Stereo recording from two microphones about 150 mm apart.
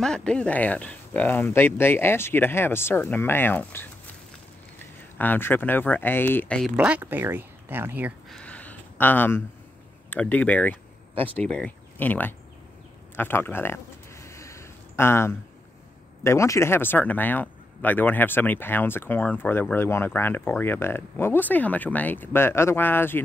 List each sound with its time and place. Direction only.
0.0 s speech: 5° left (ahead or behind)
6.8 s speech: 10° right (ahead or behind)
8.3 s a sound: 5° left (ahead or behind)
10.0 s speech: 10° left (ahead or behind)
11.1 s speech: 40° right (ahead or behind)
11.4 s speech: 5° left (ahead or behind)
13.1 s a sound: 15° left (ahead or behind)
16.3 s speech: 20° left (ahead or behind)